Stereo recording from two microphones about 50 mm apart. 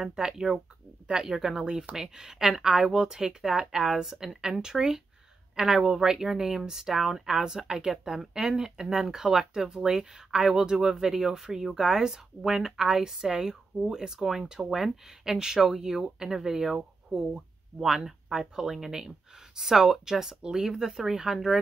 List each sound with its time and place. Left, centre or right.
0.0 s speech: centre